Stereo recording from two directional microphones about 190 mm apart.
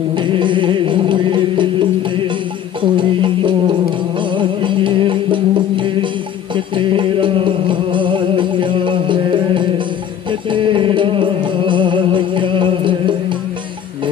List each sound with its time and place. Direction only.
0.1 s music: 25° right (ahead or behind)